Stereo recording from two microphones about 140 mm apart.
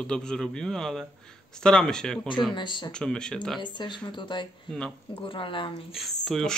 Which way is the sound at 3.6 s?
35° left (ahead or behind).